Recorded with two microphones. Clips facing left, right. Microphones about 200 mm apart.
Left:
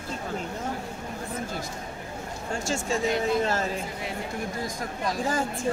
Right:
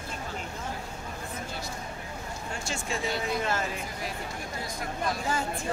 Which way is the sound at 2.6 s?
45° left (ahead or behind).